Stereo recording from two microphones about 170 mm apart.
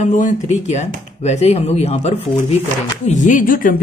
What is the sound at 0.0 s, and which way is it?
A woman's voice, 50° left (ahead or behind).